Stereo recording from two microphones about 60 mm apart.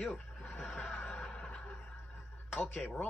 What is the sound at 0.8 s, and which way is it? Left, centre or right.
Chuckle, left.